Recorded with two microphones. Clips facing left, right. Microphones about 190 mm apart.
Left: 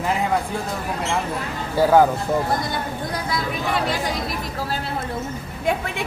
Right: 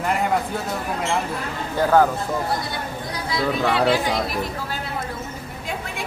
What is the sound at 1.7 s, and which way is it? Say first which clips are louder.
Speech: left 2 dB; 10° left (ahead or behind).